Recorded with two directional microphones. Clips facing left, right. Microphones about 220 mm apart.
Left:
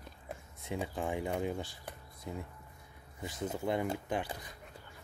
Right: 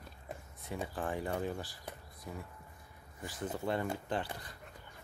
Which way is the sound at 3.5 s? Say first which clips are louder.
Left 1 dB; 15° left (ahead or behind).